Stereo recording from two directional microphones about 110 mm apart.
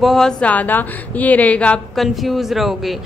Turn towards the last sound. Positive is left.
turn(degrees=0)  # may be behind; listen again after turning